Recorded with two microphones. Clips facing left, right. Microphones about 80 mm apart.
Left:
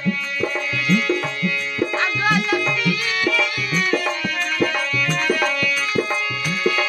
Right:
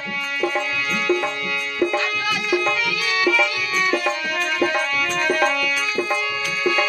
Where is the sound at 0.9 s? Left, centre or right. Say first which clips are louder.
Left 2 dB; right.